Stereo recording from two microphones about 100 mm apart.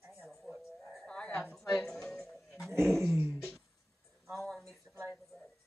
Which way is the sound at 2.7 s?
25° right (ahead or behind).